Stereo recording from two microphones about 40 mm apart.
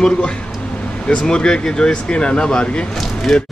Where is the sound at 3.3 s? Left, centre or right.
Centre.